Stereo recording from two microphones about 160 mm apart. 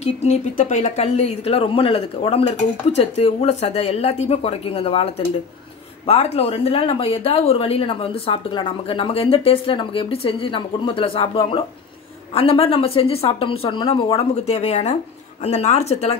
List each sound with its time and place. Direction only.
0.0 s speech: 45° left (ahead or behind)